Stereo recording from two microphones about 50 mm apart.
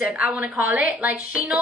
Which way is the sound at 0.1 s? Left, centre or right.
Right.